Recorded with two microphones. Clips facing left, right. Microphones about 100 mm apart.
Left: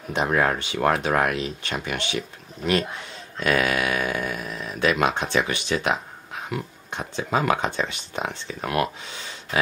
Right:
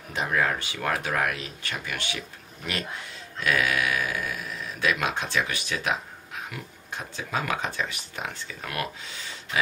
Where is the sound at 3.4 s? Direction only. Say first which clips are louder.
Left 3 dB; 35° left (ahead or behind).